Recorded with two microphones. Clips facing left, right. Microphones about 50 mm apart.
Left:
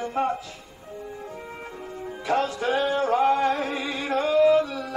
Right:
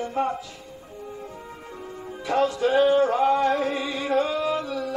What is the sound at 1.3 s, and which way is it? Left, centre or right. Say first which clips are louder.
Music: left 2 dB; left.